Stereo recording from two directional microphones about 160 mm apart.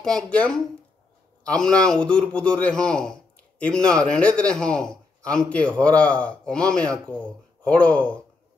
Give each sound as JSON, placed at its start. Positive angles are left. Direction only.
{"t": 0.0, "sound": "a man's voice", "side_deg": 5}